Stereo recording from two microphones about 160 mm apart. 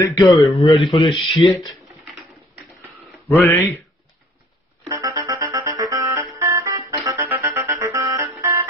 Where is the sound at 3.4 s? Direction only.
10° left (ahead or behind).